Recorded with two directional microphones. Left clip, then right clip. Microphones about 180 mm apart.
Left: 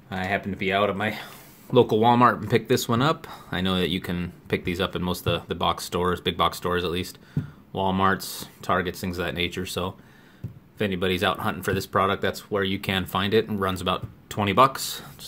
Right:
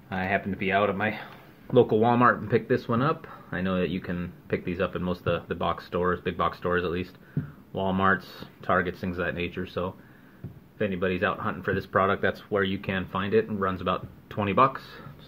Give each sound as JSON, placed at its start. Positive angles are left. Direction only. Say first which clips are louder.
{"t": 0.1, "sound": "speech", "louder": "even", "side_deg": 15}
{"t": 12.8, "sound": "speech", "louder": "left 4 dB", "side_deg": 35}